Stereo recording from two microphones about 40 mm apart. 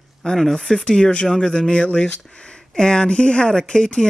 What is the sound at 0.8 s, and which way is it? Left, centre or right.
Speech, left.